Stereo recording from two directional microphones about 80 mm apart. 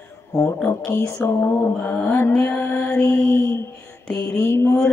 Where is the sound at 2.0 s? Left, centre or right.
Left.